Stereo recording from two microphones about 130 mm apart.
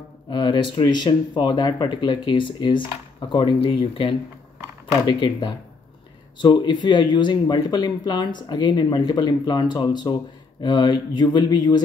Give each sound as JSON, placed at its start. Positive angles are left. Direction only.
{"t": 0.3, "sound": "speech", "side_deg": 35}